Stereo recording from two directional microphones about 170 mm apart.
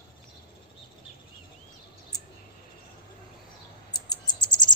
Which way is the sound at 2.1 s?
20° left (ahead or behind).